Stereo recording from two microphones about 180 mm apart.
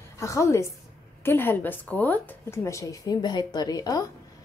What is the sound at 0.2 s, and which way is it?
A woman's voice, 15° left (ahead or behind).